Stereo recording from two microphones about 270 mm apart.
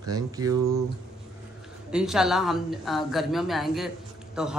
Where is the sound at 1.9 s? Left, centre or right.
Centre.